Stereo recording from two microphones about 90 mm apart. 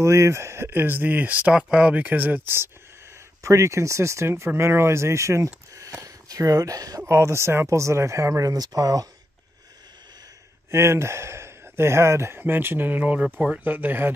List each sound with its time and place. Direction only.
0.0 s speech: 30° right (ahead or behind)
7.1 s speech: 30° right (ahead or behind)
10.7 s speech: 30° right (ahead or behind)